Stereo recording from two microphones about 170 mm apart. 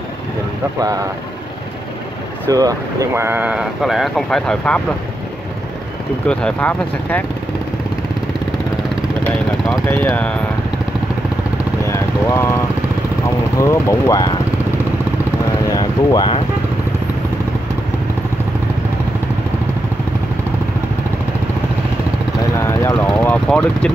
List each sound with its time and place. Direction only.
0.7 s speech: 20° right (ahead or behind)
2.5 s speech: 20° right (ahead or behind); by 4.8 s 5° left (ahead or behind)
6.2 s speech: 10° left (ahead or behind)
9.2 s vehicle: 10° left (ahead or behind)
11.8 s vehicle: 15° left (ahead or behind)
13.6 s speech: 15° left (ahead or behind)
15.7 s speech: 20° left (ahead or behind)
22.6 s speech: 15° left (ahead or behind)